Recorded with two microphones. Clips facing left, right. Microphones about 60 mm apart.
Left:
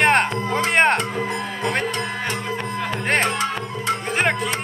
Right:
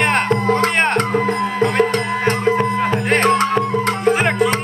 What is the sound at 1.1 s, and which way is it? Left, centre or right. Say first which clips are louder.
Music: right 7 dB; right.